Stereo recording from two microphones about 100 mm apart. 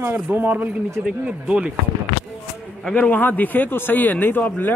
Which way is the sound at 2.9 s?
15° left (ahead or behind).